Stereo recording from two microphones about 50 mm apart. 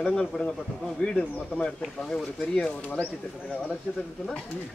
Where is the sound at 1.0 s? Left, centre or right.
Centre.